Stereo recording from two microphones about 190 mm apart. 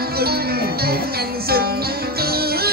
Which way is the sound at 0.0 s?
55° right (ahead or behind).